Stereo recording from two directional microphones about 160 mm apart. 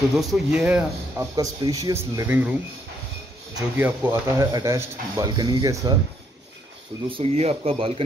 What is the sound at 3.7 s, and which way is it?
Speech, 10° right (ahead or behind).